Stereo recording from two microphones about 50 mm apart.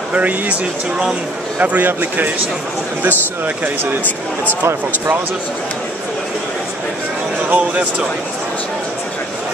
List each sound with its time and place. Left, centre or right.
0.1 s speech: right
7.4 s speech: right